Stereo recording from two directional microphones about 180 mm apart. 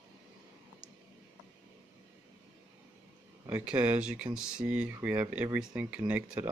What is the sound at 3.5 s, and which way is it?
Speech, 10° right (ahead or behind).